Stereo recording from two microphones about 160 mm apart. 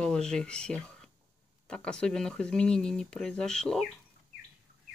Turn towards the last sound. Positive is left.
turn(degrees=5)  # may be behind; listen again after turning